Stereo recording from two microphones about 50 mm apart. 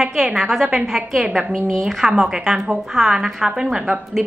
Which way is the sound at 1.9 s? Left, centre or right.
Centre.